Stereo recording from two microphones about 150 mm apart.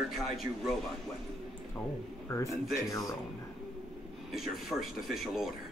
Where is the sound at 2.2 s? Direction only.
20° left (ahead or behind).